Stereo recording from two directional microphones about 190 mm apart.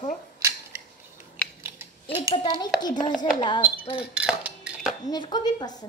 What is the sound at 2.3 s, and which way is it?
A woman's voice, 25° left (ahead or behind).